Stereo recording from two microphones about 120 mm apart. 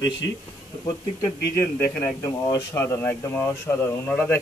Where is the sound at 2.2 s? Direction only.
30° left (ahead or behind).